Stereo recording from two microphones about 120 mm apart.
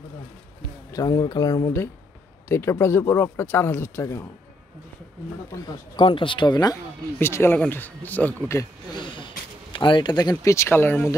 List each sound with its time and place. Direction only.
0.9 s speech: 30° left (ahead or behind)
5.9 s speech: 45° left (ahead or behind)
7.2 s speech: 20° left (ahead or behind)
8.9 s speech: 45° left (ahead or behind); by 11.1 s 20° left (ahead or behind)